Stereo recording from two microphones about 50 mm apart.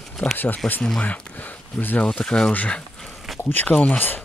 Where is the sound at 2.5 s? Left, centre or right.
Left.